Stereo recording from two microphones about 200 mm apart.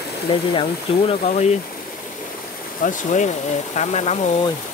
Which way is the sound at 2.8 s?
40° left (ahead or behind).